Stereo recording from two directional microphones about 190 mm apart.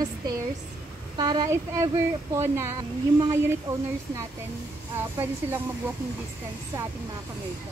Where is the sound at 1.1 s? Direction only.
20° right (ahead or behind).